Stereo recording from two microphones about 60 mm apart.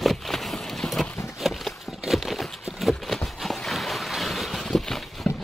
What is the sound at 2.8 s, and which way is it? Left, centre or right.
Boat, centre.